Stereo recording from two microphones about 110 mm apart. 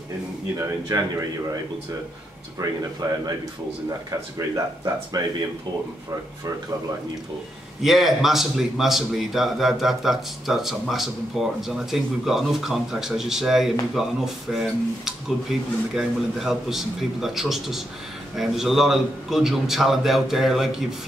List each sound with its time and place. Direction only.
0.6 s speech: 30° right (ahead or behind)
2.6 s speech: 35° right (ahead or behind)
7.8 s a man's voice: centre (ahead or behind)